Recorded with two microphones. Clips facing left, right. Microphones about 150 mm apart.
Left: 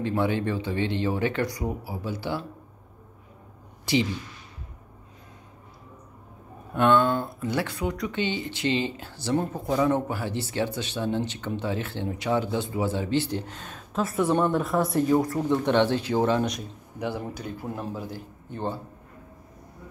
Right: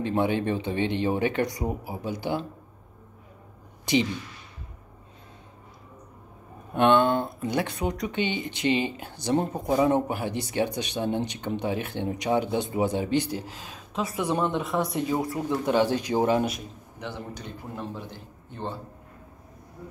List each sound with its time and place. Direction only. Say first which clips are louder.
0.0 s speech: right 1 dB; 20° right (ahead or behind)
3.8 s speech: right 1 dB; 20° right (ahead or behind)
6.7 s speech: right 1 dB; 20° right (ahead or behind)
17.0 s speech: left 5 dB; 10° left (ahead or behind)